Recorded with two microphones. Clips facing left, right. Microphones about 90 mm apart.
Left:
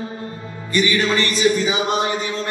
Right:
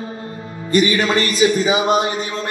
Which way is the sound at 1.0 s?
45° right (ahead or behind).